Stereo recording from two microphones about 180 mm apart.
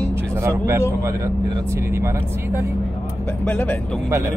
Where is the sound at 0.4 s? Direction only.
15° right (ahead or behind).